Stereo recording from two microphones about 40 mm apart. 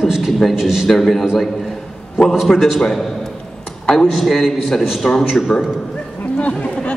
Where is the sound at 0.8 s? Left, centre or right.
Centre.